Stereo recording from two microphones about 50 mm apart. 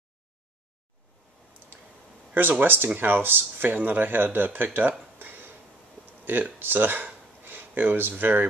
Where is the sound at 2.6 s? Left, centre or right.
Right.